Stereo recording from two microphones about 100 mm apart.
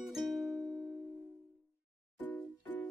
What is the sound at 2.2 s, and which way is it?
Music, 15° left (ahead or behind).